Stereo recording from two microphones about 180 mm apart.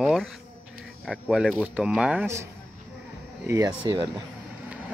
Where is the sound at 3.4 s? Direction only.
20° right (ahead or behind).